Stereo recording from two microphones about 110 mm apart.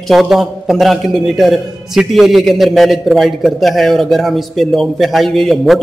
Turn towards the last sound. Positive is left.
turn(degrees=0)  # may be behind; listen again after turning